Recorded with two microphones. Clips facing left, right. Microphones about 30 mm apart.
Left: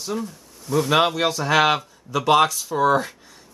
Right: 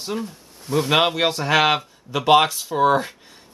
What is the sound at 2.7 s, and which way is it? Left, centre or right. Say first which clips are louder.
Speech: right 1 dB; centre.